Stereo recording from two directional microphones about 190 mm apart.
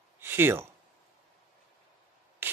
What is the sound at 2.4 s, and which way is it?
Rub, 10° right (ahead or behind).